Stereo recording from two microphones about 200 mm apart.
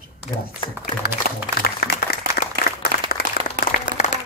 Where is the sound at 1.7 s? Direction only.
50° left (ahead or behind).